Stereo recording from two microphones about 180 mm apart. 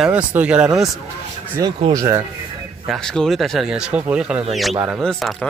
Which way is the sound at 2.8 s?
Centre (ahead or behind).